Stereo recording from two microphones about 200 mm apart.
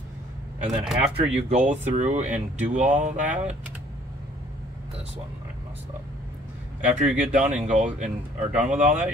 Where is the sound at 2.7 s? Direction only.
35° right (ahead or behind).